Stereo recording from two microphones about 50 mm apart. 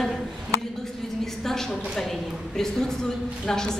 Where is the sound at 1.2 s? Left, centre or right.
Centre.